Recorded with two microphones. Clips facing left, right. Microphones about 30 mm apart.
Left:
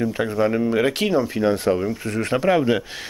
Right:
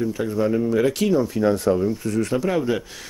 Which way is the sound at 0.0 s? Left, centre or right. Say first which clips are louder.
Left 2 dB; left.